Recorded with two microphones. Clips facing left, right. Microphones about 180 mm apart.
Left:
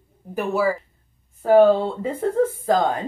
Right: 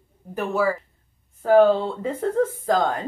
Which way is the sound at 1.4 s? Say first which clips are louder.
Left 2 dB; 5° left (ahead or behind).